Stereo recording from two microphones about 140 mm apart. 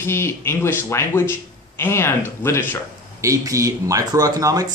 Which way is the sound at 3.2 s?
25° right (ahead or behind).